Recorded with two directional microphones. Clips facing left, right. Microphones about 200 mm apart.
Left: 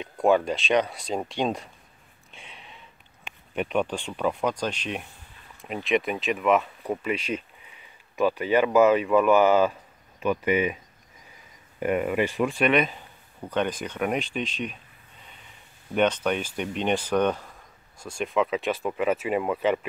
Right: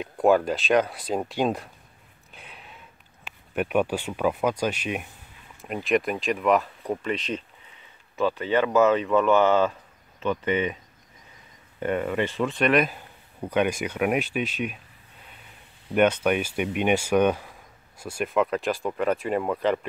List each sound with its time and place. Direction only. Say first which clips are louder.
0.0 s speech: right 1 dB; centre (ahead or behind)
2.3 s a sound: right 1 dB; 5° right (ahead or behind)
3.3 s speech: right 2 dB; 5° right (ahead or behind); by 10.8 s 10° left (ahead or behind)
11.8 s speech: left 1 dB; 10° left (ahead or behind); by 14.8 s 5° right (ahead or behind)
15.9 s speech: right 2 dB; 5° right (ahead or behind)